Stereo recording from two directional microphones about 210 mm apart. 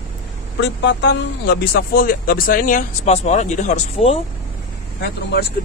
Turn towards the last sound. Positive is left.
turn(degrees=50)  # may be behind; listen again after turning